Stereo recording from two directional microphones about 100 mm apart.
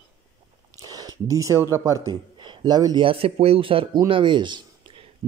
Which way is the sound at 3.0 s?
70° right (ahead or behind).